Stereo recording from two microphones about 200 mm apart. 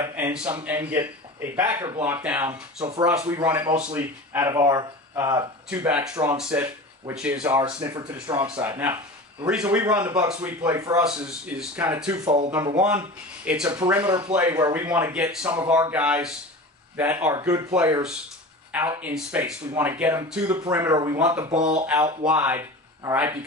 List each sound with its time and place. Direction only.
0.0 s speech: 15° right (ahead or behind)
5.9 s speech: 5° right (ahead or behind)
7.6 s speech: 20° right (ahead or behind); by 10.5 s 5° right (ahead or behind)
10.6 s speech: 15° right (ahead or behind)
11.0 s speech: 5° right (ahead or behind)
21.5 s speech: 35° right (ahead or behind)
22.2 s speech: 10° right (ahead or behind)